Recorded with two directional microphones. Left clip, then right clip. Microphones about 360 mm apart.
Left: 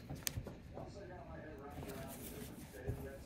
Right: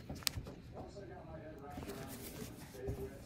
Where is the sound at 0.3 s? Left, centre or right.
Centre.